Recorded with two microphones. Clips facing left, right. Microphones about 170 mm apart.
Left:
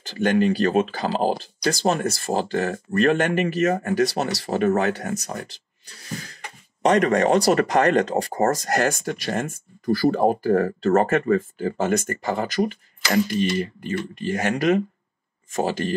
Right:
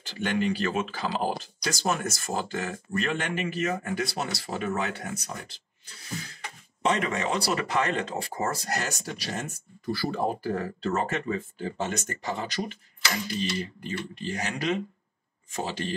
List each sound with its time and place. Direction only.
0.0 s speech: 40° left (ahead or behind)
4.1 s speech: 75° left (ahead or behind)
4.5 s speech: 45° left (ahead or behind)
6.8 s speech: 45° left (ahead or behind)